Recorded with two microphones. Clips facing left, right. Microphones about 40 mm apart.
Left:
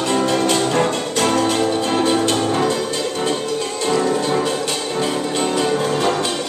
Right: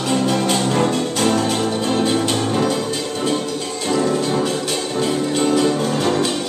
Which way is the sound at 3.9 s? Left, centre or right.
Centre.